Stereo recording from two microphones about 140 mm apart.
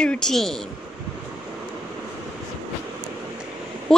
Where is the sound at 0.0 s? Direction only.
5° left (ahead or behind).